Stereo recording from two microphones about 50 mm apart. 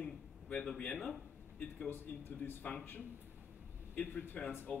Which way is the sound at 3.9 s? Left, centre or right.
Left.